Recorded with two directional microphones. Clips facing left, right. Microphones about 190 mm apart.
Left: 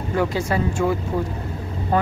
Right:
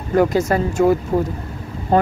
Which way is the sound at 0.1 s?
45° right (ahead or behind).